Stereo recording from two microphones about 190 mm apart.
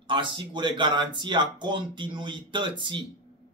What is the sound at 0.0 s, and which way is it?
Speech, 25° right (ahead or behind).